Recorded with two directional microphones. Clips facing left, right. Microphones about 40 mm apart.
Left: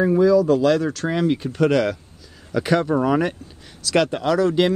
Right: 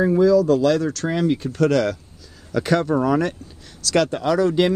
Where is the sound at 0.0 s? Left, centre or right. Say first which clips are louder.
Even; centre.